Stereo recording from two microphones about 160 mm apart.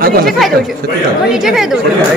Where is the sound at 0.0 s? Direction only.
70° right (ahead or behind).